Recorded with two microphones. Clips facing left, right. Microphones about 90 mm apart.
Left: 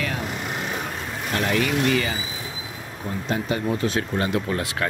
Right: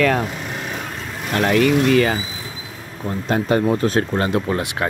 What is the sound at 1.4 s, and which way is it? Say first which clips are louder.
Speech: right 7 dB; 60° right (ahead or behind).